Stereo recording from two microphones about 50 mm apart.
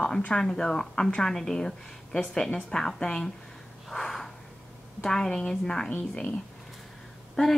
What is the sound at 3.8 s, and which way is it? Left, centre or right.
Snort, centre.